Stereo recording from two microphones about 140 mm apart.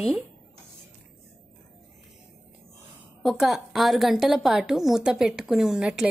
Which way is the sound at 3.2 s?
Centre (ahead or behind).